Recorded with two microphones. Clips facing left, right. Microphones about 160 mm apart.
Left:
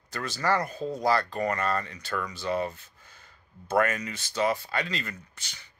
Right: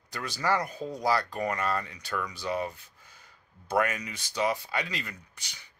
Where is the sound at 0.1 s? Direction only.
15° right (ahead or behind).